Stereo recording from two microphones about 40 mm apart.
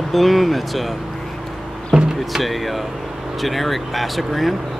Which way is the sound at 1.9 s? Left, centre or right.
Right.